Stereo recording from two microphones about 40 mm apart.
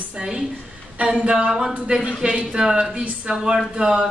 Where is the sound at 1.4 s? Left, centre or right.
Centre.